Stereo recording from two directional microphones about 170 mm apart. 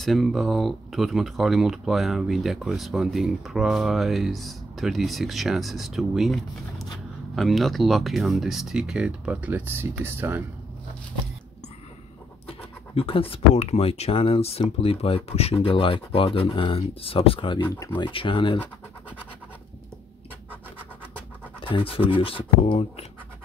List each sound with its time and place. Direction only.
0.0 s speech: centre (ahead or behind)
12.4 s speech: 35° left (ahead or behind)
17.6 s speech: 15° left (ahead or behind)
17.9 s speech: 30° left (ahead or behind)
21.5 s speech: 30° left (ahead or behind)